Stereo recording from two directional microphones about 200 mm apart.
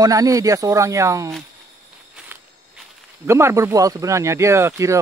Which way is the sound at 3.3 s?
15° right (ahead or behind).